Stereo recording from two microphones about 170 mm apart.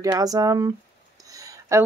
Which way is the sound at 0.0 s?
20° right (ahead or behind).